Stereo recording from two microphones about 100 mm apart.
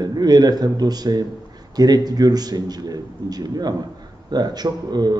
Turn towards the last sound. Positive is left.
turn(degrees=-45)  # may be behind; listen again after turning